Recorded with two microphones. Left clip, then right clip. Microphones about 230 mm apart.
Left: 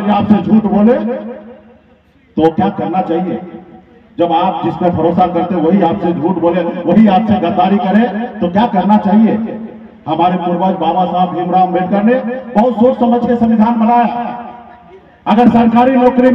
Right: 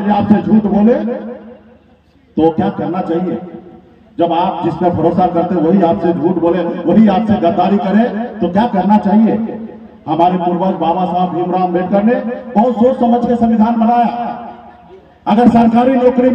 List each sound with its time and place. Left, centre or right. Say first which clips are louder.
0.3 s a man's voice: left 1 dB; left
2.3 s a man's voice: left 1 dB; left
15.2 s a man's voice: left 1 dB; left